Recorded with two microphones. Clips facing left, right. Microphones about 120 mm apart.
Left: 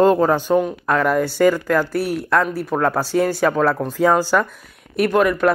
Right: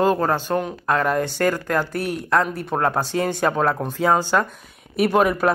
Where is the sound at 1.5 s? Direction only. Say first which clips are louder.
Left 4 dB; 10° right (ahead or behind).